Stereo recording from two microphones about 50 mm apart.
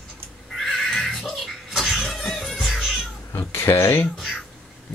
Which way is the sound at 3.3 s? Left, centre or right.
Left.